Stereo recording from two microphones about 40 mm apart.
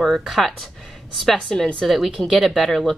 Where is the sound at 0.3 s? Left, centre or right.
Centre.